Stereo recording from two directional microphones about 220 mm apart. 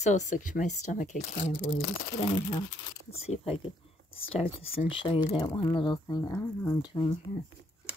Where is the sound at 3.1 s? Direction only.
30° left (ahead or behind).